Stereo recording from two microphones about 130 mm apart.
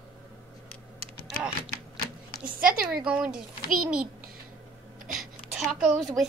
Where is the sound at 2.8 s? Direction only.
5° right (ahead or behind).